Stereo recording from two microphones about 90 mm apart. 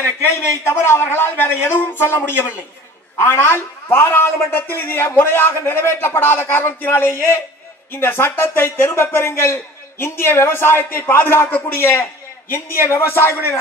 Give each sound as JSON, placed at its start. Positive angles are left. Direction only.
{"t": 0.2, "sound": "a man's voice", "side_deg": 25}